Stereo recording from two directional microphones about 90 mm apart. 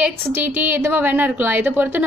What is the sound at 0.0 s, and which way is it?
A woman's voice, 20° right (ahead or behind).